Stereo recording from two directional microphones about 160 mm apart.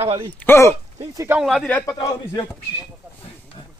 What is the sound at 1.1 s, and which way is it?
Speech, 20° right (ahead or behind).